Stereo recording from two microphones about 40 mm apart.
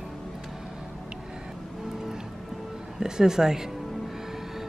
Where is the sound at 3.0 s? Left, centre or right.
Centre.